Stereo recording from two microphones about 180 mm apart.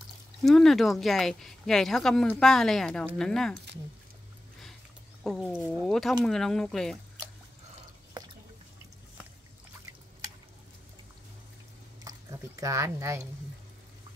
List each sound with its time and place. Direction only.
0.4 s speech: centre (ahead or behind)
5.2 s speech: centre (ahead or behind)
12.0 s a sound: 20° right (ahead or behind)